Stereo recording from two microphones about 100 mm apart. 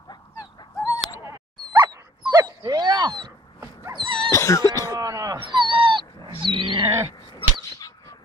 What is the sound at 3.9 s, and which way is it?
Dog, 55° right (ahead or behind).